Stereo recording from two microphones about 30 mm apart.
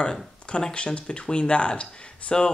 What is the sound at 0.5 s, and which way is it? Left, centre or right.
Speech, left.